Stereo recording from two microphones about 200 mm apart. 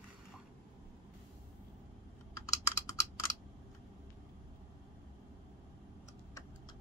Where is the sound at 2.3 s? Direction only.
15° left (ahead or behind).